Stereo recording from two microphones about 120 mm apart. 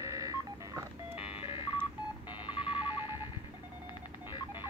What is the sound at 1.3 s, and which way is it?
Telephone dialing, 45° left (ahead or behind).